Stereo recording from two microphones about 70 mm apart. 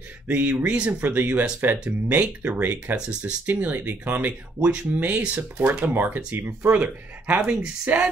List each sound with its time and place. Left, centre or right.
0.3 s speech: right